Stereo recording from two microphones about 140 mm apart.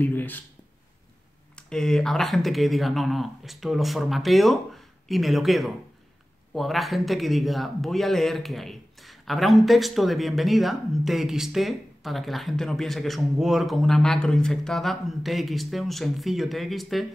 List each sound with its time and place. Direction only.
0.0 s speech: 15° left (ahead or behind)
1.7 s a man's voice: 5° left (ahead or behind)